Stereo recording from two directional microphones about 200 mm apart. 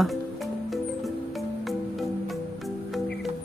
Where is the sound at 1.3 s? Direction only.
Centre (ahead or behind).